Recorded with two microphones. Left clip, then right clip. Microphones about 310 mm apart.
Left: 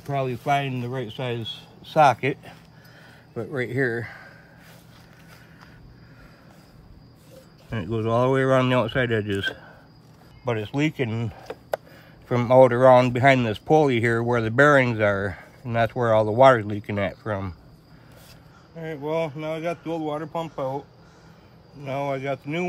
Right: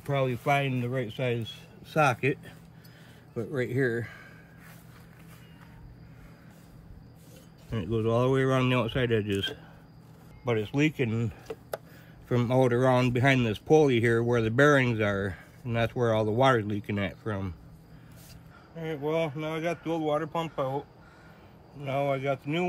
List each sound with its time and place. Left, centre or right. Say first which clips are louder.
0.0 s speech: left 2 dB; centre; by 4.3 s left
7.7 s speech: left 4 dB; left
18.8 s speech: left 3 dB; centre
21.8 s speech: left 1 dB; centre